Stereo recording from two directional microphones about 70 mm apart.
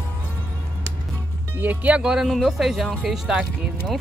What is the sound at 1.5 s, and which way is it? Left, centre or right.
Speech, right.